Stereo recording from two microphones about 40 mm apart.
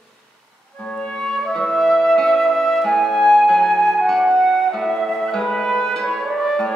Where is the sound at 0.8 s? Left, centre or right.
Centre.